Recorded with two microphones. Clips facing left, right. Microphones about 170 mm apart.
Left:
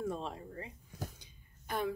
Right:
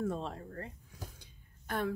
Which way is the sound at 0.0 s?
5° left (ahead or behind).